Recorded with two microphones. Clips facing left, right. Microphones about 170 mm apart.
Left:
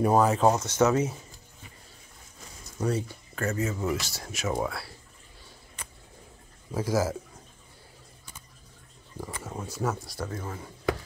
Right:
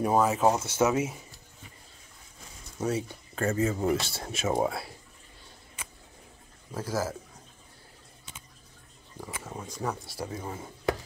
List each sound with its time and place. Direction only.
0.0 s speech: centre (ahead or behind)
2.8 s speech: 5° right (ahead or behind)
3.3 s speech: 30° right (ahead or behind)
6.7 s speech: 10° left (ahead or behind)
9.5 s speech: 5° left (ahead or behind)
10.2 s speech: 15° right (ahead or behind)